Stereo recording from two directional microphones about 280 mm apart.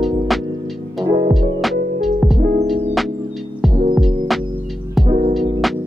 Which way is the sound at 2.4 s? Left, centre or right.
Right.